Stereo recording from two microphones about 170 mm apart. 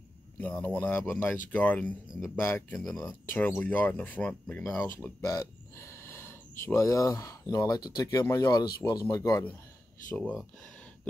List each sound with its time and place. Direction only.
0.4 s speech: 10° left (ahead or behind)
5.0 s speech: 20° left (ahead or behind)